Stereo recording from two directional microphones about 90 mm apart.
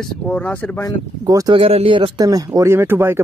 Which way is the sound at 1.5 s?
90° right.